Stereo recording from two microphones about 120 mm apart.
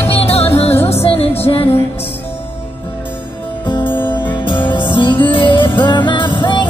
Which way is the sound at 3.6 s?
40° left (ahead or behind).